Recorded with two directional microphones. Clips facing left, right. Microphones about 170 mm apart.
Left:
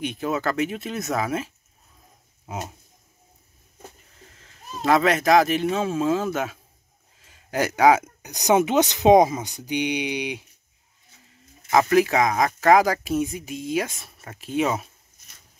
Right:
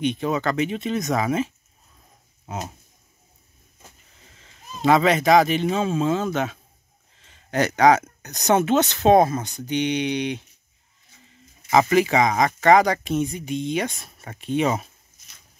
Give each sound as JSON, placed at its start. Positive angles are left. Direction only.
{"t": 0.0, "sound": "speech", "side_deg": 5}
{"t": 4.3, "sound": "speech", "side_deg": 0}
{"t": 11.2, "sound": "speech", "side_deg": 0}